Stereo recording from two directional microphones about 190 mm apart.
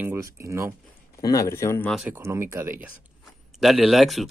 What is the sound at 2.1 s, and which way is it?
Speech, 15° right (ahead or behind).